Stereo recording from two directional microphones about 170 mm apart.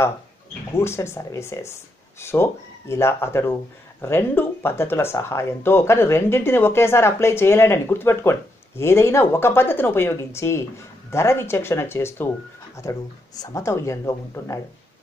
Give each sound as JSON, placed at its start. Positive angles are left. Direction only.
{"t": 0.7, "sound": "speech", "side_deg": 15}